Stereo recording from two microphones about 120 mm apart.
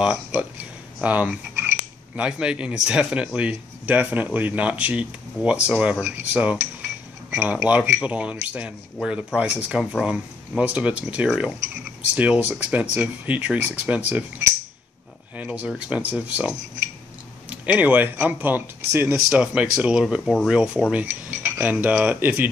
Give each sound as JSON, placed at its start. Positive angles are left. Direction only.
{"t": 0.0, "sound": "cutlery", "side_deg": -5}
{"t": 9.8, "sound": "speech", "side_deg": -5}
{"t": 10.6, "sound": "cutlery", "side_deg": -10}
{"t": 15.3, "sound": "cutlery", "side_deg": -10}
{"t": 20.9, "sound": "a sound", "side_deg": -15}
{"t": 21.7, "sound": "cutlery", "side_deg": -10}